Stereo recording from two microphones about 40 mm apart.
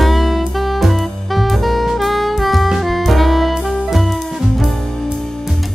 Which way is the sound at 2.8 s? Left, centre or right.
Centre.